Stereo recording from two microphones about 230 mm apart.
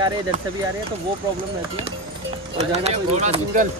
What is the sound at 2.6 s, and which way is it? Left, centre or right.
Speech, right.